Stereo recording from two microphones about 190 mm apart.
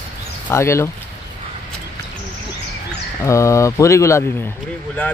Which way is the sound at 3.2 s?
15° left (ahead or behind).